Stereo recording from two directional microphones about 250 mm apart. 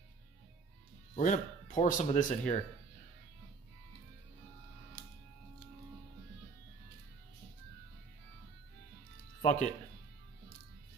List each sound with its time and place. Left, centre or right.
1.1 s speech: left
9.4 s speech: left